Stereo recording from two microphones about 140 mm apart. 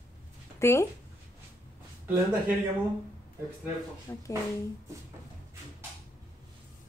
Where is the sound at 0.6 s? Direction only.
20° left (ahead or behind).